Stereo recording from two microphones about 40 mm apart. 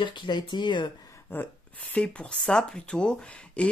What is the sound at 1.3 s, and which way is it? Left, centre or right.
Speech, left.